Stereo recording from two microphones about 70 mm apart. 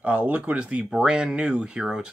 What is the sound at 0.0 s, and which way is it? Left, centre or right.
Speech, right.